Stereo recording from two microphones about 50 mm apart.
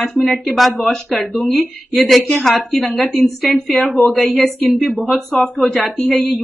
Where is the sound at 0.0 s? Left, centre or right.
Centre.